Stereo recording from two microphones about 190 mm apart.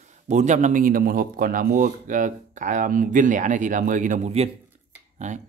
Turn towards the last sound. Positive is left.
turn(degrees=-40)  # may be behind; listen again after turning